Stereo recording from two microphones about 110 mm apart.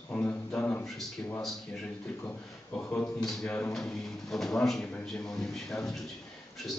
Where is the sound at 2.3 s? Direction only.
10° left (ahead or behind).